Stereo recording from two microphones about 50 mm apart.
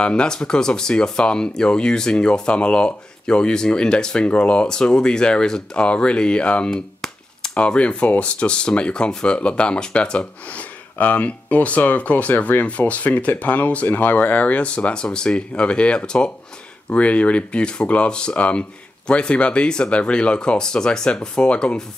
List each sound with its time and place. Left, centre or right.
0.0 s speech: centre
6.7 s a sound: centre
7.5 s speech: left